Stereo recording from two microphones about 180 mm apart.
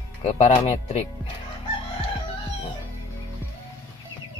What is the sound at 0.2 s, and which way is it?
Speech, 35° left (ahead or behind).